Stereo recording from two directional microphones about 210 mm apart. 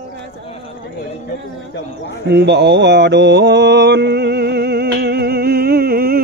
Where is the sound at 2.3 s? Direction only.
55° right (ahead or behind).